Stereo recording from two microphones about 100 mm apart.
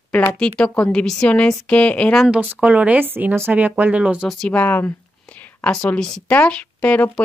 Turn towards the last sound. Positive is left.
turn(degrees=15)  # may be behind; listen again after turning